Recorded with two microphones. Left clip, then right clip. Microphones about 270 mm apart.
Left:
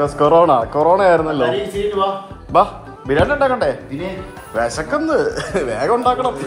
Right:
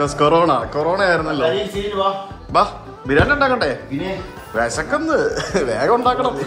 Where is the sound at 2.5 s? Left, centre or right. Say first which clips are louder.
Left 2 dB; centre.